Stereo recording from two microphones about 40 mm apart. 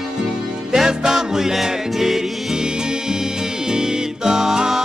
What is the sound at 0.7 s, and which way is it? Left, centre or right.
Music, centre.